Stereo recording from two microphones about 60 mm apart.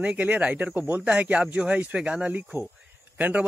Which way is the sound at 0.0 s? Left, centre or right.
Right.